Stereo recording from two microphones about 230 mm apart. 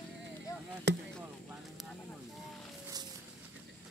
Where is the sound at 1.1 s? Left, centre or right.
Centre.